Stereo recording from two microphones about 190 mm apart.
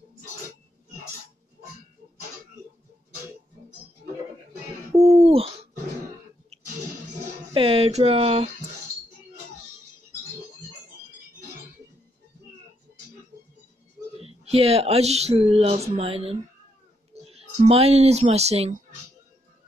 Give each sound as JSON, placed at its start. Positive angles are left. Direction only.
{"t": 4.9, "sound": "bird", "side_deg": -30}
{"t": 7.5, "sound": "speech", "side_deg": -30}
{"t": 14.2, "sound": "speech", "side_deg": -30}